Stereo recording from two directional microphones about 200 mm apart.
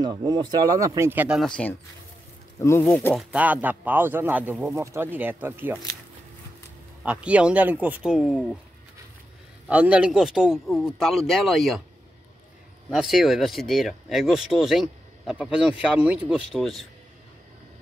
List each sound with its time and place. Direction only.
0.0 s speech: 20° right (ahead or behind)
2.6 s speech: 10° left (ahead or behind)
3.2 s speech: 5° right (ahead or behind)
7.0 s speech: 5° right (ahead or behind)
9.7 s speech: 5° right (ahead or behind)
12.9 s speech: centre (ahead or behind)